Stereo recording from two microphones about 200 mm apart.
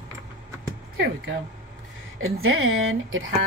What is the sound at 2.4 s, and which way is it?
Speech, 90° right.